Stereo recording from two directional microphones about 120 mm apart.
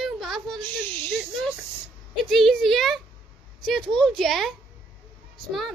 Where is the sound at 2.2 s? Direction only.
Centre (ahead or behind).